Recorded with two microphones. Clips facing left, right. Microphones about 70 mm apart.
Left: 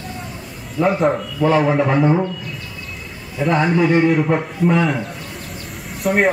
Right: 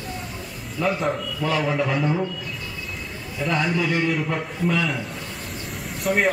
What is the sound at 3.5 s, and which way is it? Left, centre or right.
A man's voice, left.